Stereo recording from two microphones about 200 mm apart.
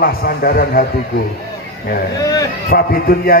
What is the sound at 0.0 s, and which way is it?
Speech, 50° left (ahead or behind).